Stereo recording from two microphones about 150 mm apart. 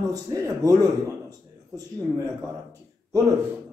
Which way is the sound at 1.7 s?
25° right (ahead or behind).